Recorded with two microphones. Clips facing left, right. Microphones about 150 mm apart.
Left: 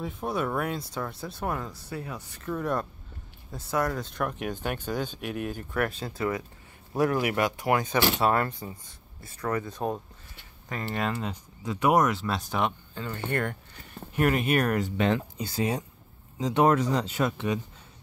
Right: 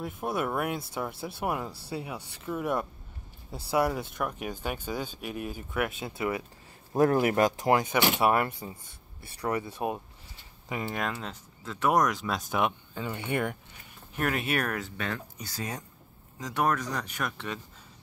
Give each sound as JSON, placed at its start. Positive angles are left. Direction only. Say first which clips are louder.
{"t": 0.0, "sound": "speech", "louder": "left 1 dB", "side_deg": -5}
{"t": 5.9, "sound": "speech", "louder": "left 1 dB", "side_deg": -20}
{"t": 7.8, "sound": "speech", "louder": "even", "side_deg": -15}
{"t": 10.9, "sound": "speech", "louder": "left 7 dB", "side_deg": 0}
{"t": 14.1, "sound": "speech", "louder": "left 5 dB", "side_deg": 0}
{"t": 15.0, "sound": "speech", "louder": "left 9 dB", "side_deg": 20}